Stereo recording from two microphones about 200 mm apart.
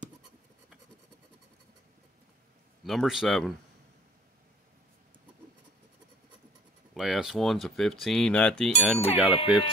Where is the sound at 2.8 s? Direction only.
Centre (ahead or behind).